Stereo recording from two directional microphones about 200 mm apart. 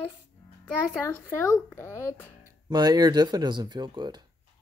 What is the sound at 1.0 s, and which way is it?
Speech, 10° left (ahead or behind).